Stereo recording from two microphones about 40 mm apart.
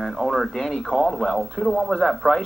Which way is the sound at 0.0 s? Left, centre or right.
Centre.